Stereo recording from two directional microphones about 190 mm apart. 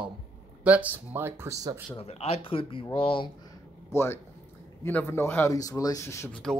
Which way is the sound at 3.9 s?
15° left (ahead or behind).